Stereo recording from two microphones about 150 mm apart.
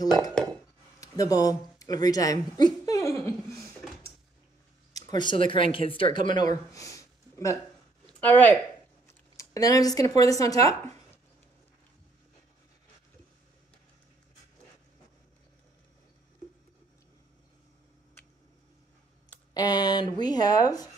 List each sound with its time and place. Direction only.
0.0 s speech: 25° left (ahead or behind)
1.0 s a sound: 25° left (ahead or behind)
4.9 s a sound: 30° left (ahead or behind)
5.5 s speech: 35° left (ahead or behind); by 8.5 s 10° left (ahead or behind)
9.4 s speech: 25° left (ahead or behind)
19.5 s speech: 25° left (ahead or behind)